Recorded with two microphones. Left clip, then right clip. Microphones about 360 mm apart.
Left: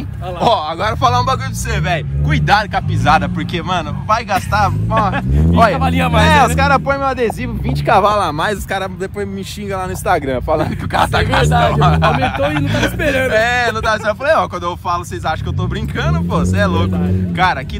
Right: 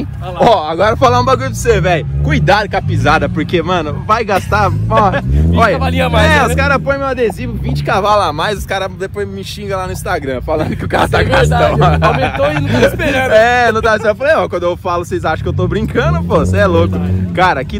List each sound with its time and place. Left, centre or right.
0.4 s speech: centre
8.0 s speech: centre
10.0 s speech: left
10.9 s speech: centre
13.0 s speech: centre
13.3 s speech: centre